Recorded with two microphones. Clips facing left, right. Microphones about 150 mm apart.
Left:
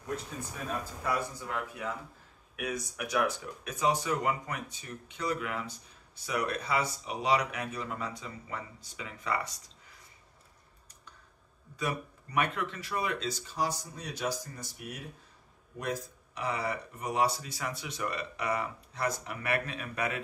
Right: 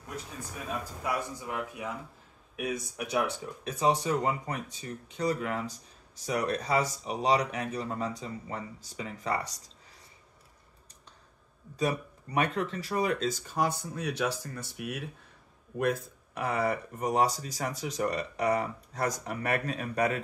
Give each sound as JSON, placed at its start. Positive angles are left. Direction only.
{"t": 1.0, "sound": "speech", "side_deg": -15}
{"t": 11.7, "sound": "speech", "side_deg": -35}